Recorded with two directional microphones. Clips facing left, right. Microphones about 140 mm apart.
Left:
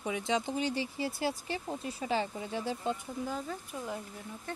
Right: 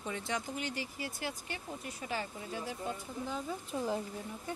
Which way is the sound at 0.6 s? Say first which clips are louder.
Left 6 dB; 30° left (ahead or behind).